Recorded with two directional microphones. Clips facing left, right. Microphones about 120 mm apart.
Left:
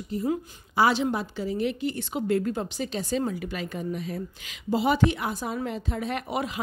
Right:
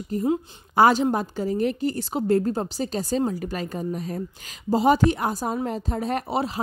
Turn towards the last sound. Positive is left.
turn(degrees=-35)  # may be behind; listen again after turning